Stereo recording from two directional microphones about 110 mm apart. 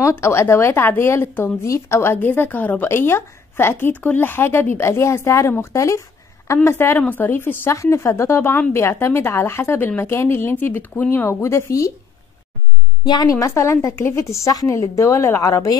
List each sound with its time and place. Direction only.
0.0 s speech: 25° left (ahead or behind)
13.0 s a woman's voice: 40° left (ahead or behind)